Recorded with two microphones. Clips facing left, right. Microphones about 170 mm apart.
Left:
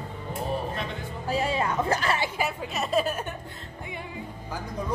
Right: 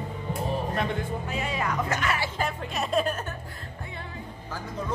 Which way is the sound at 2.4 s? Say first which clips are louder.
Even; 5° left (ahead or behind).